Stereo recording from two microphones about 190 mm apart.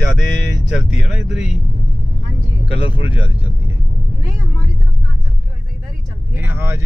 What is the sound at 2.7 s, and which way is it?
Speech, 30° left (ahead or behind).